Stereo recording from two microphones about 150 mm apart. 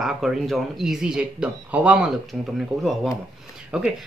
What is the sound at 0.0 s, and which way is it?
Speech, centre (ahead or behind).